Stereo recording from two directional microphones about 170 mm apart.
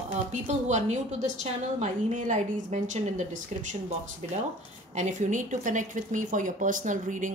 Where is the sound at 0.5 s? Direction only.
45° right (ahead or behind).